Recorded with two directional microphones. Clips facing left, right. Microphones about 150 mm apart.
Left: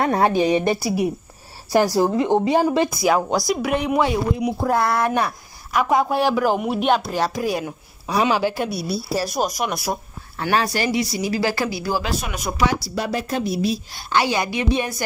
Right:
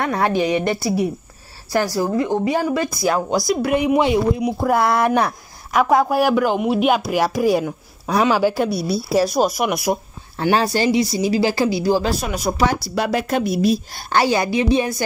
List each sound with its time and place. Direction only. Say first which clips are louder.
0.0 s a woman's voice: left 1 dB; 25° left (ahead or behind)
2.9 s speech: even; centre (ahead or behind)
5.8 s speech: right 3 dB; centre (ahead or behind)
8.1 s a woman's voice: right 2 dB; 10° left (ahead or behind)
8.4 s speech: right 4 dB; 10° right (ahead or behind)
8.7 s a woman's voice: right 4 dB; 45° right (ahead or behind)
9.6 s speech: right 5 dB; 10° right (ahead or behind)
10.3 s speech: right 3 dB; 30° right (ahead or behind)
12.9 s a woman's voice: right 4 dB; 75° right (ahead or behind); by 14.2 s 50° right (ahead or behind)
14.2 s speech: right 4 dB; 35° right (ahead or behind)